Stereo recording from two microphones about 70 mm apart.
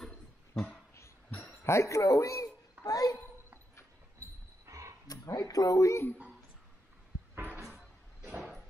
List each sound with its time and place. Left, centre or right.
1.6 s speech: left
2.8 s a child's voice: left
4.2 s a sound: right
5.0 s speech: left
7.3 s a sound: right
7.7 s vehicle: right